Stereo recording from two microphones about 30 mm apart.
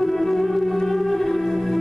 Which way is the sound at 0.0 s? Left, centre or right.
Centre.